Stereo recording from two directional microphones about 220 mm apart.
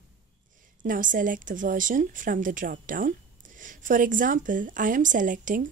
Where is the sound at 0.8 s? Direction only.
35° right (ahead or behind).